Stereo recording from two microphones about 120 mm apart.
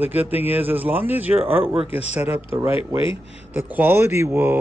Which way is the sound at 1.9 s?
60° left (ahead or behind).